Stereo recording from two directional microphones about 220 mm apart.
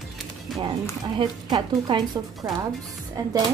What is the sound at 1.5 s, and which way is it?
A woman's voice, 20° right (ahead or behind).